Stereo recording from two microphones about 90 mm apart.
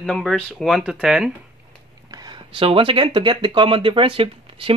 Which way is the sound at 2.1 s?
45° right (ahead or behind).